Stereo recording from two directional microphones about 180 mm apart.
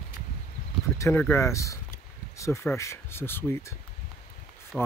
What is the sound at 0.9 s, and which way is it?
Speech, 15° left (ahead or behind).